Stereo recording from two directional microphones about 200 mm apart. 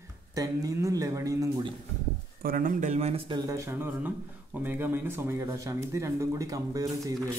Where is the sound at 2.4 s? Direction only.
45° right (ahead or behind); by 7.1 s 15° right (ahead or behind).